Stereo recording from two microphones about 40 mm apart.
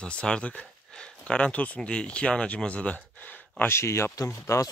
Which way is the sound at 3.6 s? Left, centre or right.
Left.